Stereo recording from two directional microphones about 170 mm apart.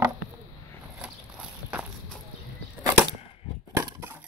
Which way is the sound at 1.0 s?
5° right (ahead or behind).